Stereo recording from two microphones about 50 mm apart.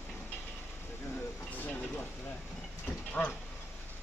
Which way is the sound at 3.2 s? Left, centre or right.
Left.